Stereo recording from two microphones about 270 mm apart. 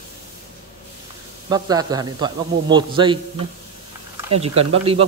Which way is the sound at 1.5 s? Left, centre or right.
Centre.